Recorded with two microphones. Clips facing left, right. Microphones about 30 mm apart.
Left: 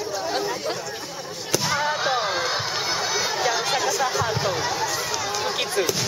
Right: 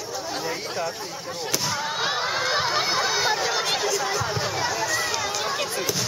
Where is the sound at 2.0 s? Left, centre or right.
Centre.